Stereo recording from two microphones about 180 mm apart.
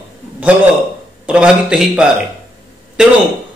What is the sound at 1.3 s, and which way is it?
Speech, 5° right (ahead or behind).